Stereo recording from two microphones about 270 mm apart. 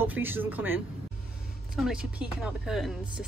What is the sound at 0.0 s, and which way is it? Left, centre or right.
A woman's voice, centre.